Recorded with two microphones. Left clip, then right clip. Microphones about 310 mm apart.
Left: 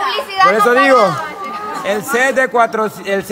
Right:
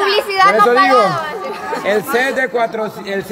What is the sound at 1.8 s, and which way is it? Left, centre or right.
Speech, centre.